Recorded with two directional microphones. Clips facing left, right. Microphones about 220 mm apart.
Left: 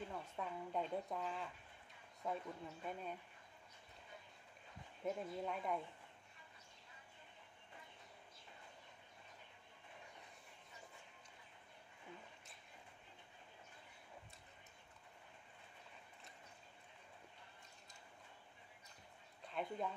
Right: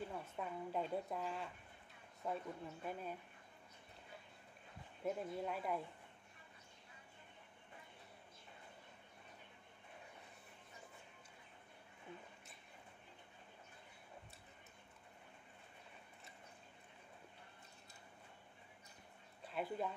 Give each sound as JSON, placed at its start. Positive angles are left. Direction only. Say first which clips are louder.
{"t": 0.1, "sound": "a woman's voice", "louder": "right 1 dB", "side_deg": -5}
{"t": 5.0, "sound": "a woman's voice", "louder": "right 1 dB", "side_deg": -5}
{"t": 19.4, "sound": "speech", "louder": "right 1 dB", "side_deg": -5}